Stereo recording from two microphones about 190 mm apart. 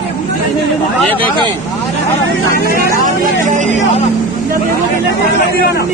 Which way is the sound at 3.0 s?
40° right (ahead or behind).